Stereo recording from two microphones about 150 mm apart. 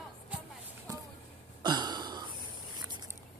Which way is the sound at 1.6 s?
30° right (ahead or behind).